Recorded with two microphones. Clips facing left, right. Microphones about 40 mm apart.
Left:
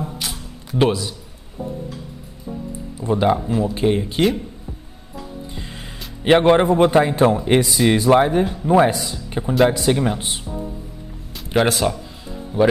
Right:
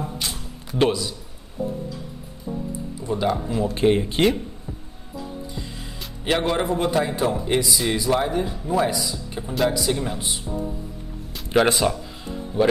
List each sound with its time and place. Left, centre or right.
0.0 s a sound: centre
3.0 s speech: left
3.7 s speech: centre
5.5 s music: left
6.2 s speech: left
11.5 s speech: centre